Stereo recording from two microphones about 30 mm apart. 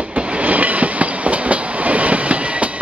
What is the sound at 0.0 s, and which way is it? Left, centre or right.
Train, right.